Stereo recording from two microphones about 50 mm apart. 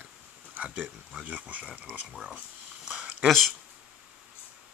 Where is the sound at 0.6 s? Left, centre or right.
Right.